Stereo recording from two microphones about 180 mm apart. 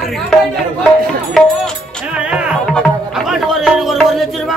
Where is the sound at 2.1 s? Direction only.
Centre (ahead or behind).